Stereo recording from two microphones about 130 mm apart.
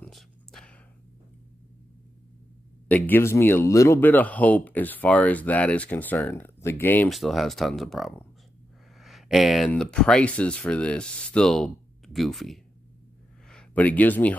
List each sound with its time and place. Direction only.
0.0 s whispering: 5° left (ahead or behind)
2.9 s speech: 15° left (ahead or behind)
7.1 s speech: centre (ahead or behind)
9.0 s a sound: centre (ahead or behind)
9.7 s speech: 5° left (ahead or behind)